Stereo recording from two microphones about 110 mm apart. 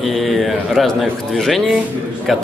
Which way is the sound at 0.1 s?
Centre (ahead or behind).